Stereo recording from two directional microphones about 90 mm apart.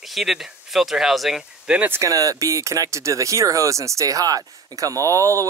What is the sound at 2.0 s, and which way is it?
Speech, 40° right (ahead or behind).